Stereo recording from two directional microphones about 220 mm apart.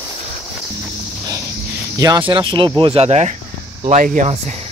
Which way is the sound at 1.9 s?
15° right (ahead or behind).